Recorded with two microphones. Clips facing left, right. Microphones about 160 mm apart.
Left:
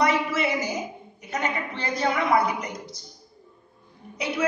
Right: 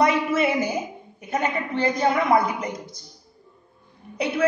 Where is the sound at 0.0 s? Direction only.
50° right (ahead or behind).